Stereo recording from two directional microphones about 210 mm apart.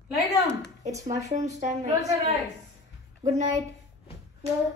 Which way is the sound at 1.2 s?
35° right (ahead or behind).